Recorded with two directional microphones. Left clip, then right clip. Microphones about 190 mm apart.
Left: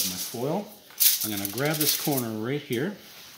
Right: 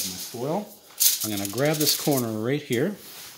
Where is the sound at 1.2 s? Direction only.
40° right (ahead or behind).